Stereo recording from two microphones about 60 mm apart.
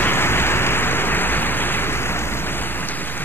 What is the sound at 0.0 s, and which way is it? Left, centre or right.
Rain, left.